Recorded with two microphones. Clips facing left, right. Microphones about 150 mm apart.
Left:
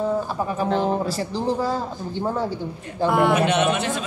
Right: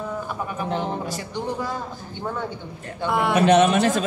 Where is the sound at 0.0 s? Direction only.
35° left (ahead or behind).